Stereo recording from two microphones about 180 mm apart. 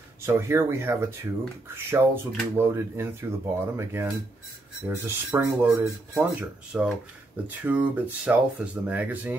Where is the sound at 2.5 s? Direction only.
10° right (ahead or behind).